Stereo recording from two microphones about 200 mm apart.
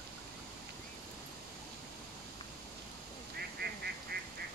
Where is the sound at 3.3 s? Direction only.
50° right (ahead or behind).